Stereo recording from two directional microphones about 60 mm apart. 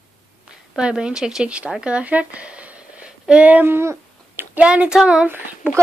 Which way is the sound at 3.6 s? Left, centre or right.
Right.